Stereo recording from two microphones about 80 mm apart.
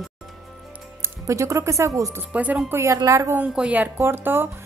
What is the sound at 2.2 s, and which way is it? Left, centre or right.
Speech, centre.